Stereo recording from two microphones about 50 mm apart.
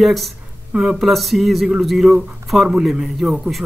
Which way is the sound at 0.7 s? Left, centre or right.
Centre.